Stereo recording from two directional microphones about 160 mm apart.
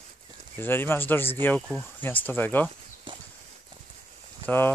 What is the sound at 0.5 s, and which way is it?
Speech, 15° left (ahead or behind).